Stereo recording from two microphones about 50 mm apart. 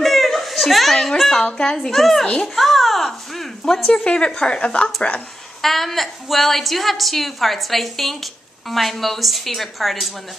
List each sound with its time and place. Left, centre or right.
0.0 s a sound: centre
1.4 s a child's voice: centre
2.0 s a woman's voice: centre
2.4 s a sound: centre
4.0 s speech: left
5.6 s a woman's voice: centre